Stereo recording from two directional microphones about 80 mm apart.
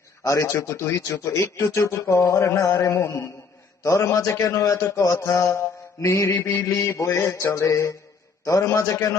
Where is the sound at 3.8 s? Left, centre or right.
Left.